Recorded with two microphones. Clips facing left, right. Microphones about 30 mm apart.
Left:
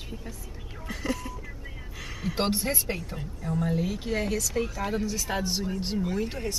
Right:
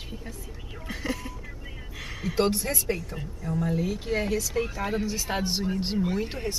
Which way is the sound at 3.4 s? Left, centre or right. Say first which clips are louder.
Even; centre.